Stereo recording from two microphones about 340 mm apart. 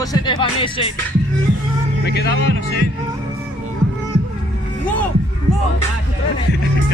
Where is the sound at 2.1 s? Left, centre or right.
Left.